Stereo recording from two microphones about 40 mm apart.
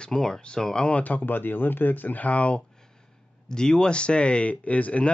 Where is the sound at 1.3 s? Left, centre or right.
Left.